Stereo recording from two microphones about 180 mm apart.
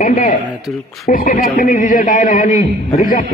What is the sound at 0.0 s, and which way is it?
Speech, 45° left (ahead or behind).